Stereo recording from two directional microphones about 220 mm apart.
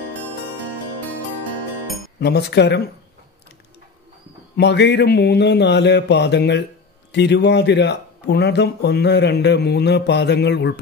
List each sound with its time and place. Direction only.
2.1 s speech: 50° left (ahead or behind)
4.6 s speech: 50° left (ahead or behind)